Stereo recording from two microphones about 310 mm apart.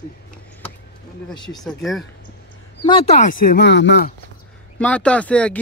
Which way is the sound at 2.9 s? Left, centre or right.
Centre.